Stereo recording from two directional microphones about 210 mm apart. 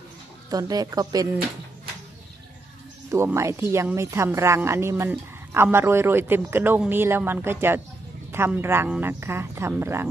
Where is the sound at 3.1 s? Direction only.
15° right (ahead or behind).